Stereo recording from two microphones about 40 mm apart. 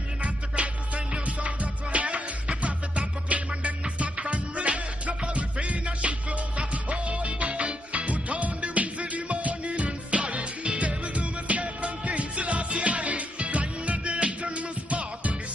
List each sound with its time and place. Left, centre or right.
0.2 s music: right